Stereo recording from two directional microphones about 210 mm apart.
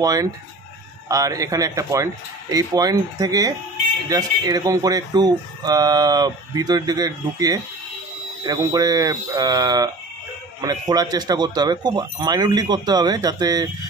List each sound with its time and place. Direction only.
0.0 s speech: 15° right (ahead or behind)